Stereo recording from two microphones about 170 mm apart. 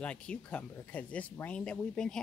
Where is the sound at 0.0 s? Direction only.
5° left (ahead or behind).